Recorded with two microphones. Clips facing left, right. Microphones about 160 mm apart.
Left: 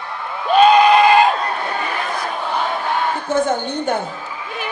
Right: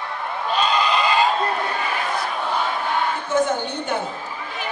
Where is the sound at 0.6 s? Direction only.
55° left (ahead or behind).